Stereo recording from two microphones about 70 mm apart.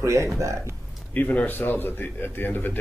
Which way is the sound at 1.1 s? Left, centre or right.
Left.